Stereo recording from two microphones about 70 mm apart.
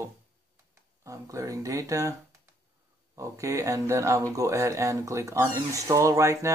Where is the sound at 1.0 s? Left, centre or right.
Right.